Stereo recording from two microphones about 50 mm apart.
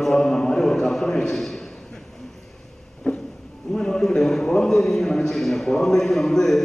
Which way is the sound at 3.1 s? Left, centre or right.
Left.